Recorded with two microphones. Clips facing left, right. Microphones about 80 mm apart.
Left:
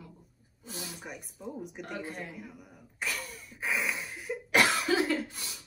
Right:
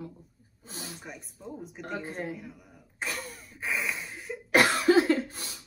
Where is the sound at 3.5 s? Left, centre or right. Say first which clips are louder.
Even; centre.